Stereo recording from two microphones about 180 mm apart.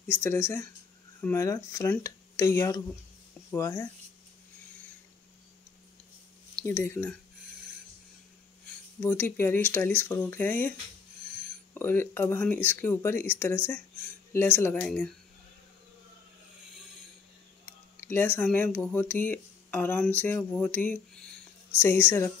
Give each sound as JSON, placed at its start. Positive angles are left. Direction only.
{"t": 0.1, "sound": "speech", "side_deg": 15}
{"t": 6.5, "sound": "speech", "side_deg": 15}
{"t": 9.0, "sound": "speech", "side_deg": 10}
{"t": 11.7, "sound": "speech", "side_deg": 10}
{"t": 18.0, "sound": "speech", "side_deg": 10}